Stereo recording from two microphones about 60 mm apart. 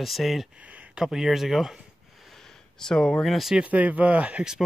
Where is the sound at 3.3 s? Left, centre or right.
Centre.